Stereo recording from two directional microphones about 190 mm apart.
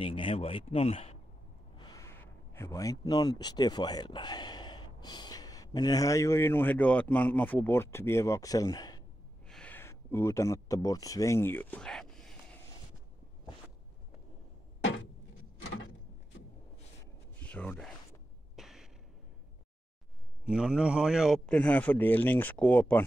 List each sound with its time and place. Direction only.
0.0 s speech: 30° left (ahead or behind)
1.8 s a sound: 20° left (ahead or behind)
5.0 s speech: 20° left (ahead or behind)
9.5 s speech: 5° left (ahead or behind)
17.0 s a sound: 10° left (ahead or behind)
20.4 s speech: 5° right (ahead or behind)